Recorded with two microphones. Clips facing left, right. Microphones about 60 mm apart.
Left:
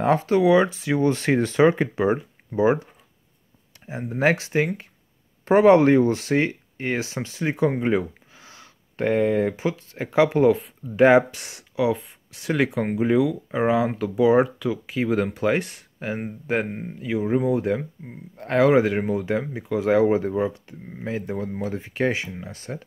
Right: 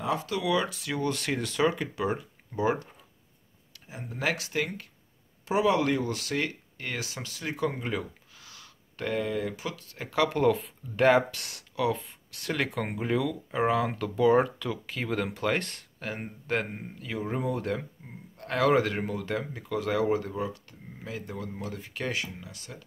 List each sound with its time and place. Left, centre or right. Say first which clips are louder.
0.0 s speech: left 11 dB; left
5.4 s speech: left 10 dB; left
10.4 s speech: left 6 dB; centre
11.1 s speech: left 5 dB; centre; by 22.8 s left